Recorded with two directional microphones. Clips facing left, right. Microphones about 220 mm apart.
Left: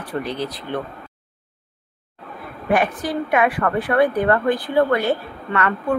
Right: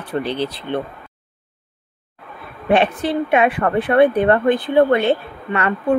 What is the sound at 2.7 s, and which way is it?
A woman's voice, 25° right (ahead or behind).